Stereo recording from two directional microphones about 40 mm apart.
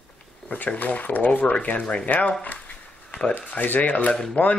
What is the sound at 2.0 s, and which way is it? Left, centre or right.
Speech, left.